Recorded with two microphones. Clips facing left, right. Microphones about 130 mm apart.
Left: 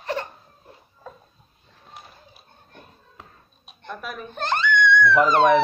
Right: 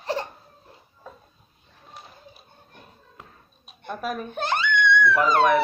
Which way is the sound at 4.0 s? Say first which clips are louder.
Right 7 dB; 40° right (ahead or behind).